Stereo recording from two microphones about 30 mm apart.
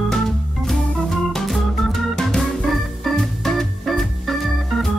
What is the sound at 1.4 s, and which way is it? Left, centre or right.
Organ, centre.